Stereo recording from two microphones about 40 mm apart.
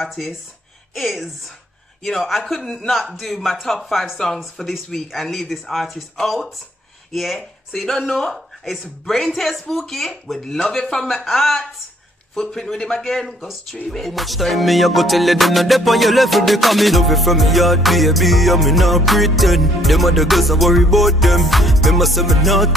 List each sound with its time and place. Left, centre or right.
0.1 s music: centre
2.7 s speech: centre
3.0 s music: centre
4.6 s speech: centre
5.0 s music: centre
7.1 s speech: centre
11.1 s music: centre
12.4 s speech: centre
13.4 s music: centre